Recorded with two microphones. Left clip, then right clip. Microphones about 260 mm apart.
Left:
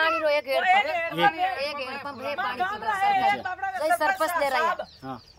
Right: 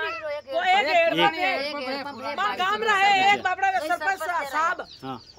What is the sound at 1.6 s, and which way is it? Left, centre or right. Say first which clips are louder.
Speech: even; centre.